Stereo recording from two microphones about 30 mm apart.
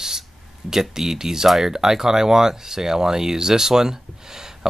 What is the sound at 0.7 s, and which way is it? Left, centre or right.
Speech, centre.